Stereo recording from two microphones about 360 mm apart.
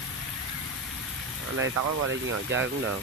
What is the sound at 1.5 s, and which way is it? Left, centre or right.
Speech, right.